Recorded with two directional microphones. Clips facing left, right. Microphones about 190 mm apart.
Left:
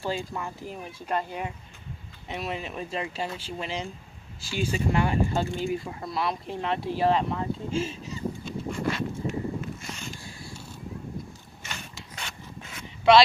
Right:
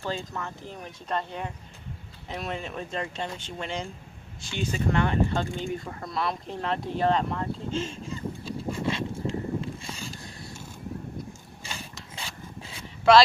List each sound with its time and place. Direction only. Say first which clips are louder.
0.0 s speech: left 2 dB; 10° left (ahead or behind)
8.5 s a sound: right 1 dB; 25° right (ahead or behind)
11.6 s ratchet: even; 30° right (ahead or behind)
12.2 s filing: right 1 dB; 30° right (ahead or behind)